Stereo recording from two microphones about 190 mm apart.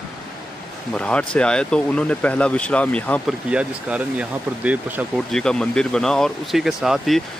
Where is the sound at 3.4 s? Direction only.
5° right (ahead or behind).